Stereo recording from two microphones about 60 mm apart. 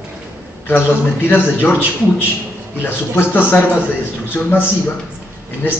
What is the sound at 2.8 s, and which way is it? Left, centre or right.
A man's voice, left.